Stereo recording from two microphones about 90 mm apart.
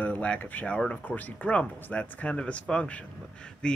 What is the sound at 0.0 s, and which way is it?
Speech, 15° left (ahead or behind).